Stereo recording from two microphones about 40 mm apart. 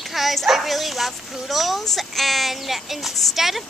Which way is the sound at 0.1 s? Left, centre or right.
Centre.